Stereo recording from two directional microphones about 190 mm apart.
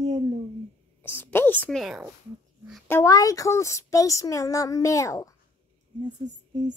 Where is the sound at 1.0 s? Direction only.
10° left (ahead or behind).